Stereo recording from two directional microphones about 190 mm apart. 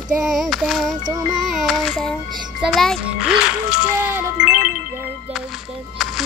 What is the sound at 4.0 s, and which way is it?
Speech, 10° right (ahead or behind).